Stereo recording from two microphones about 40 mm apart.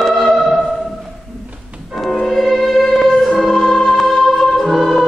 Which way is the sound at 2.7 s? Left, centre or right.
Centre.